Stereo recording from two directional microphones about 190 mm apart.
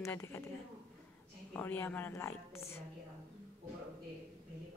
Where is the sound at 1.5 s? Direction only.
10° left (ahead or behind).